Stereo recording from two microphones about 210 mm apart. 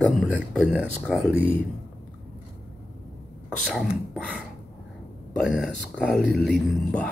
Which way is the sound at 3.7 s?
5° right (ahead or behind).